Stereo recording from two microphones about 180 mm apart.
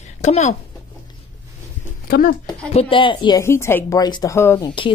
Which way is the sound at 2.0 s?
55° left (ahead or behind).